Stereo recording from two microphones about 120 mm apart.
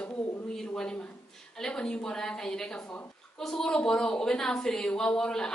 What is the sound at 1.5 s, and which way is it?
A woman's voice, 5° left (ahead or behind).